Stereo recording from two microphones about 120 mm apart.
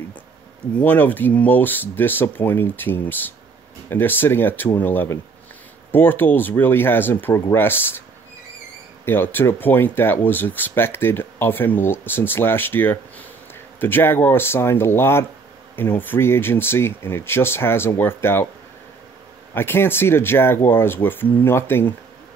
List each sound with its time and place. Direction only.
0.7 s speech: 15° left (ahead or behind)
9.0 s speech: 15° left (ahead or behind)
19.5 s speech: 20° left (ahead or behind)